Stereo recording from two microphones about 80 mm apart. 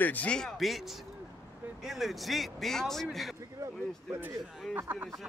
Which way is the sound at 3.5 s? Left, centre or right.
Right.